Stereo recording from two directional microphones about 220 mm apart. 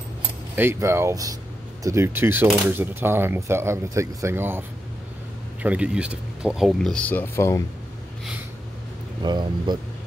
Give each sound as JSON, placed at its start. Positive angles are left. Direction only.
{"t": 0.6, "sound": "speech", "side_deg": -10}
{"t": 9.2, "sound": "speech", "side_deg": -20}